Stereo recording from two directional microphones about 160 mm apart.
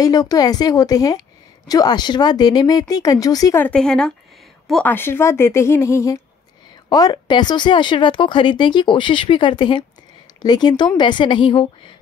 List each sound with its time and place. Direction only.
0.0 s speech: 25° left (ahead or behind)
3.6 s a woman's voice: 5° left (ahead or behind); by 11.9 s 30° left (ahead or behind)